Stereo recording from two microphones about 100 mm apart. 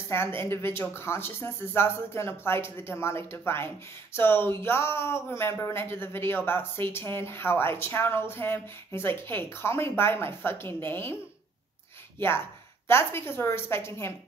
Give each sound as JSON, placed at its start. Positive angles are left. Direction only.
{"t": 0.4, "sound": "speech", "side_deg": 25}
{"t": 12.2, "sound": "speech", "side_deg": 25}